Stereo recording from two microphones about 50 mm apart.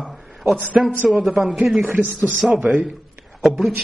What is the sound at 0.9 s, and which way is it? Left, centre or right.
Speech, right.